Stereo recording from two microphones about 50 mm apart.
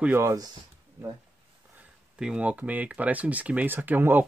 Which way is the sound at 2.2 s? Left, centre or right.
Centre.